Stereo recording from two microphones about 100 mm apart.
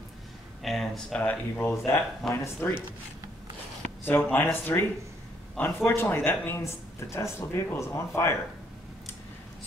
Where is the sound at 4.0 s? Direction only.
20° left (ahead or behind).